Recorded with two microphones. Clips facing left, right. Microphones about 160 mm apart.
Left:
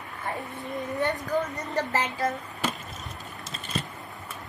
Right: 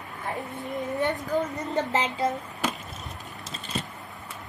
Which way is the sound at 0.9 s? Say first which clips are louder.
Even; 20° right (ahead or behind).